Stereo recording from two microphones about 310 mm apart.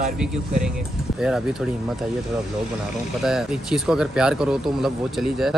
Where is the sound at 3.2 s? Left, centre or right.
Centre.